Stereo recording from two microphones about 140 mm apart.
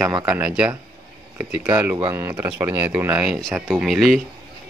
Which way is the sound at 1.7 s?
20° right (ahead or behind).